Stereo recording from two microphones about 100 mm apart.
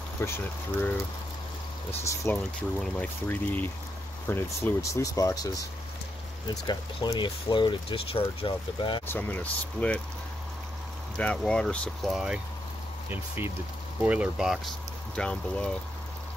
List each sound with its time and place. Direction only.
0.2 s speech: 25° left (ahead or behind)
1.9 s speech: 25° left (ahead or behind)
6.5 s speech: 40° left (ahead or behind); by 9.0 s 55° left (ahead or behind)
9.0 s speech: 20° left (ahead or behind)
11.1 s speech: 10° left (ahead or behind)
12.1 s speech: 5° right (ahead or behind)
13.1 s speech: 20° right (ahead or behind); by 14.7 s 5° right (ahead or behind)
15.1 s speech: 10° left (ahead or behind)